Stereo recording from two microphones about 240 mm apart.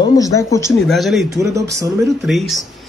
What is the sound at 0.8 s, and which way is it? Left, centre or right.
Speech, centre.